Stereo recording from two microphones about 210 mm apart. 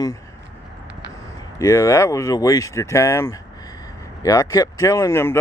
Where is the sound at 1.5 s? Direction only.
15° left (ahead or behind).